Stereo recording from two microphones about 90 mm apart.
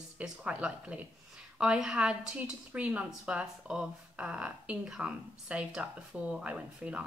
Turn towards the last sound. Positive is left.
turn(degrees=-15)  # may be behind; listen again after turning